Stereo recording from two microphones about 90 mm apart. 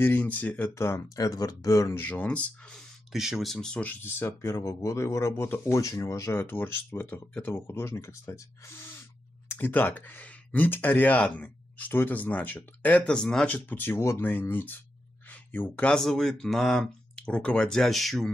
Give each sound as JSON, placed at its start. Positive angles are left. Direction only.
{"t": 0.0, "sound": "speech", "side_deg": 20}
{"t": 0.7, "sound": "speech", "side_deg": 30}
{"t": 1.0, "sound": "speech", "side_deg": 40}
{"t": 2.0, "sound": "speech", "side_deg": 15}
{"t": 3.1, "sound": "speech", "side_deg": -5}
{"t": 3.5, "sound": "speech", "side_deg": 10}
{"t": 3.8, "sound": "speech", "side_deg": 25}
{"t": 4.4, "sound": "speech", "side_deg": 40}
{"t": 6.4, "sound": "speech", "side_deg": 25}
{"t": 13.5, "sound": "speech", "side_deg": 20}
{"t": 15.2, "sound": "a sound", "side_deg": 20}
{"t": 15.9, "sound": "speech", "side_deg": 5}